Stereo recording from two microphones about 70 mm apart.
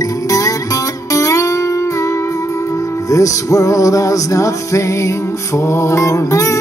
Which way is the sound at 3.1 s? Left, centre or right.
Left.